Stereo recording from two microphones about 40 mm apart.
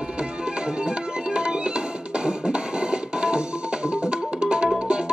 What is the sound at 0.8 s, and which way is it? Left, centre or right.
Music, right.